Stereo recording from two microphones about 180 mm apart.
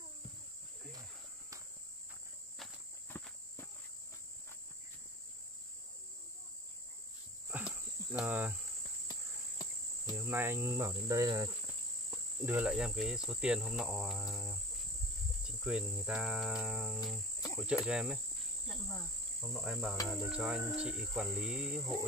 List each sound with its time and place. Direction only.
3.1 s walk: 10° left (ahead or behind)
7.5 s cricket: 10° right (ahead or behind)
10.1 s cricket: 10° right (ahead or behind)
11.1 s insect: 20° right (ahead or behind)
12.1 s cricket: 5° right (ahead or behind)
18.7 s insect: 5° left (ahead or behind)
20.2 s cricket: 5° right (ahead or behind)